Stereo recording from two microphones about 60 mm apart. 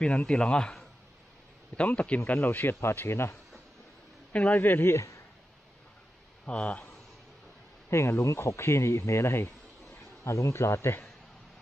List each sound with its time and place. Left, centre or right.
0.0 s a man's voice: centre
1.8 s speech: left
2.8 s speech: left
4.3 s a man's voice: left
6.4 s speech: left
7.9 s speech: left